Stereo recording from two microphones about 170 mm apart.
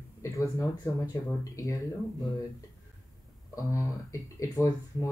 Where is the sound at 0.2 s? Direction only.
15° left (ahead or behind).